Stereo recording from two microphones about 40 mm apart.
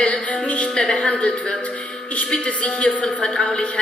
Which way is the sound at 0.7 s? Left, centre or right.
Centre.